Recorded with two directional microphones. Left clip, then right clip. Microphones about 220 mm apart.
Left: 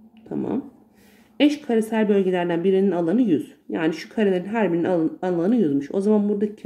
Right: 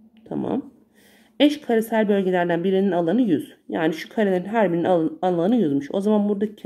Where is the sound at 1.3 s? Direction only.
25° right (ahead or behind).